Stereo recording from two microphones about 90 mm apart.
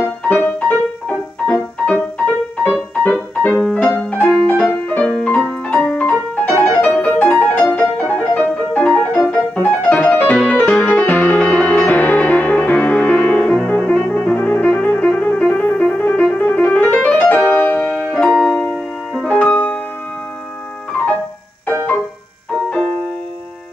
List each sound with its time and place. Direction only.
0.3 s music: 15° left (ahead or behind)
3.4 s music: 10° left (ahead or behind)
17.8 s music: 10° right (ahead or behind)
18.1 s music: 5° left (ahead or behind)